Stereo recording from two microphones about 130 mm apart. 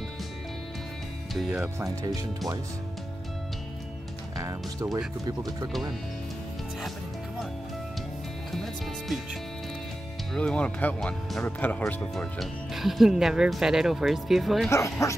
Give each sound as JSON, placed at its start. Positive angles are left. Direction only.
{"t": 1.3, "sound": "speech", "side_deg": -5}
{"t": 4.4, "sound": "speech", "side_deg": -25}
{"t": 9.0, "sound": "speech", "side_deg": 0}
{"t": 14.7, "sound": "speech", "side_deg": 25}